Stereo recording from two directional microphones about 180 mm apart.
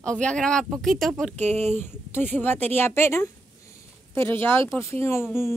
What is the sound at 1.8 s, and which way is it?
Speech, 10° left (ahead or behind).